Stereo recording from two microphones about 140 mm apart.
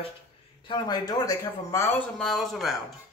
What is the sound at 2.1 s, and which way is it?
Speech, centre (ahead or behind).